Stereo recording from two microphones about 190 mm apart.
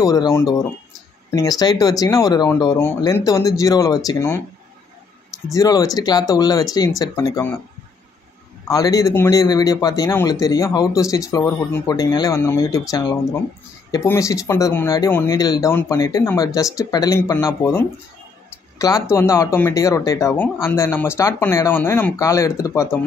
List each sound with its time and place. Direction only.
0.0 s a man's voice: 20° left (ahead or behind)
5.5 s a man's voice: 20° left (ahead or behind)
8.6 s a man's voice: 20° left (ahead or behind)
18.8 s a man's voice: 20° left (ahead or behind)